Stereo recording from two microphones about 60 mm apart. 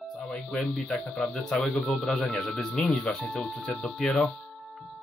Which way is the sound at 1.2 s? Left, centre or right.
Centre.